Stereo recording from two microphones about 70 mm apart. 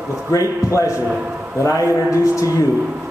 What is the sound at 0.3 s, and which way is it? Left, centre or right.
A man's voice, left.